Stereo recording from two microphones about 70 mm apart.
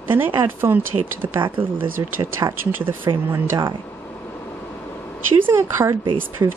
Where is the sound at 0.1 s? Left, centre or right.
Right.